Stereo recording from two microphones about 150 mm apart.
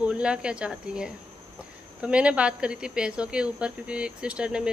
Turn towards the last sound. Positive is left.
turn(degrees=-5)  # may be behind; listen again after turning